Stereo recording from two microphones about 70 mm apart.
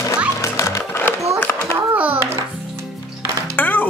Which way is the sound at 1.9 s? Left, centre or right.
Right.